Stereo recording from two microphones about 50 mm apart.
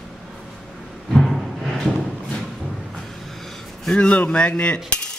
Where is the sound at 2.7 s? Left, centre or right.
Centre.